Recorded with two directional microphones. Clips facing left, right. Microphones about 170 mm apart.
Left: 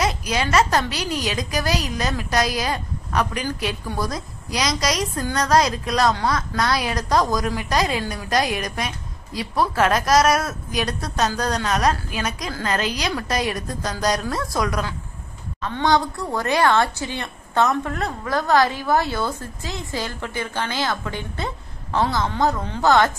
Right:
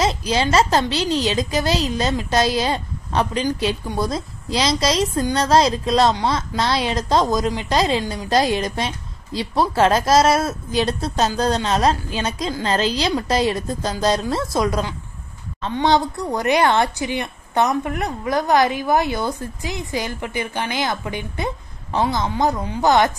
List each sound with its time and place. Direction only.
0.0 s a woman's voice: 30° right (ahead or behind)